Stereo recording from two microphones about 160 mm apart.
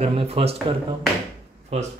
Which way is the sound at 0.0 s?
35° right (ahead or behind).